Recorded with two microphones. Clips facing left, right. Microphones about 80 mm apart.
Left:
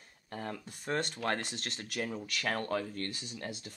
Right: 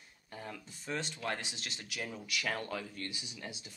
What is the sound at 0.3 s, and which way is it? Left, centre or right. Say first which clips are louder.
Speech: left 5 dB; left.